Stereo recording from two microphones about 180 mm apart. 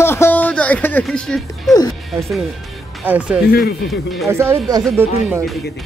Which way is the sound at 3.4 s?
65° left (ahead or behind).